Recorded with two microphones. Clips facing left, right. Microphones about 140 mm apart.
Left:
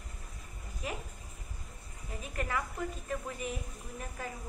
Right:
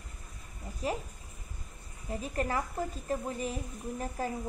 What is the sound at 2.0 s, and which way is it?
A woman's voice, 35° right (ahead or behind).